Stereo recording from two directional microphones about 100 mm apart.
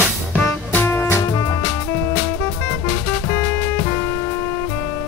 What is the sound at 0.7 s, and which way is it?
Music, 20° left (ahead or behind).